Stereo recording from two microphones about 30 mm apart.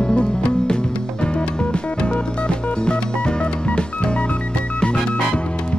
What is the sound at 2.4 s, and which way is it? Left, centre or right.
Music, left.